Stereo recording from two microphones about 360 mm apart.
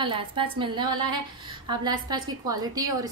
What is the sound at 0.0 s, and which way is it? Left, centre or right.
A woman's voice, centre.